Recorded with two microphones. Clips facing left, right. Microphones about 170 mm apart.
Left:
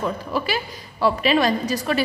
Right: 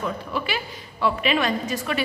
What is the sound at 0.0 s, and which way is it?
A woman's voice, 40° left (ahead or behind).